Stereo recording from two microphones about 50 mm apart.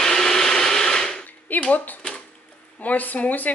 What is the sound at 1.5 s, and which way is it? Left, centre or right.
Speech, left.